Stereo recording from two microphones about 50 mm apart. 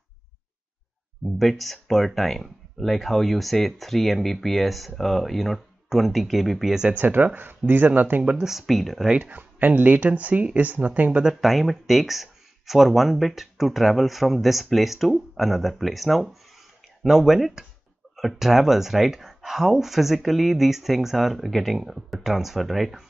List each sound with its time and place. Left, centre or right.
1.2 s speech: centre
6.9 s speech: right
8.4 s speech: centre
9.2 s speech: right
11.2 s speech: centre